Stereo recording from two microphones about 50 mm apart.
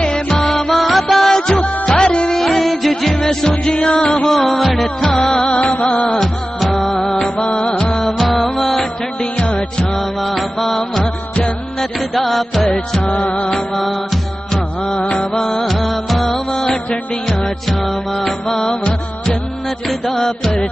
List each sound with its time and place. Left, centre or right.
0.0 s music: centre
0.5 s music: centre
1.2 s music: centre
2.2 s music: centre
5.6 s music: left
6.1 s music of bollywood: centre
7.3 s music: centre
8.0 s music: centre
9.9 s music: centre; by 13.5 s left
13.5 s music: centre
16.7 s music: centre
17.4 s music: centre
19.9 s music: centre